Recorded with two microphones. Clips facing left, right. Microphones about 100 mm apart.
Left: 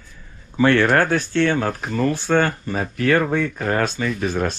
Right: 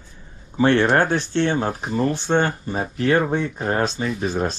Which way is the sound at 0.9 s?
20° right (ahead or behind).